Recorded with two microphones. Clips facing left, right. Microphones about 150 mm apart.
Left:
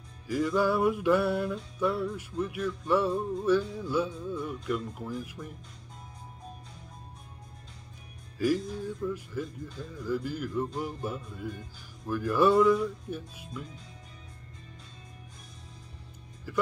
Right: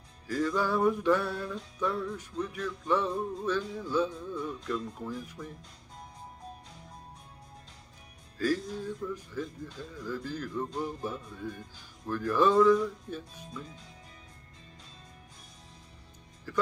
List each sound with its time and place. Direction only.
0.3 s music: 10° left (ahead or behind)
8.4 s music: 15° left (ahead or behind)